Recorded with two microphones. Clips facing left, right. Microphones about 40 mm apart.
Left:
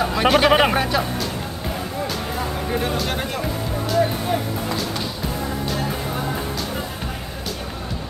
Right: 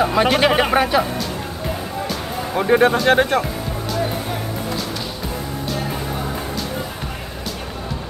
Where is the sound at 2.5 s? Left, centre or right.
Right.